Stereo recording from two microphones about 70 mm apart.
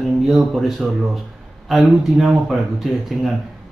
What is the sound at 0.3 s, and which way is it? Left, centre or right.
Speech, centre.